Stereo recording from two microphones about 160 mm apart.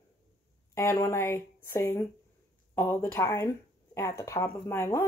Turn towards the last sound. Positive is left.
turn(degrees=15)  # may be behind; listen again after turning